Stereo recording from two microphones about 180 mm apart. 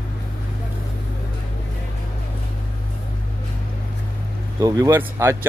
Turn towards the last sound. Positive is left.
turn(degrees=-15)  # may be behind; listen again after turning